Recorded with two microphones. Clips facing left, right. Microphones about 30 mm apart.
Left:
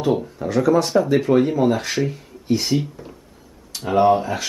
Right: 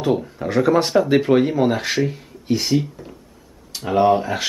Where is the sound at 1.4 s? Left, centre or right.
Centre.